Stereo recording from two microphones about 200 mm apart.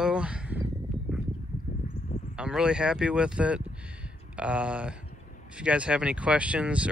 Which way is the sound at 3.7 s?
5° right (ahead or behind).